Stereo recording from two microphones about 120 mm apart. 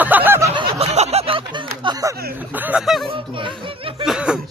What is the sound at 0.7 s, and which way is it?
Speech, 65° right (ahead or behind).